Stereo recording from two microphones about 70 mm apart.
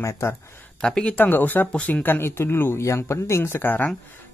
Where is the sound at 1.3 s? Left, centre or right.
Left.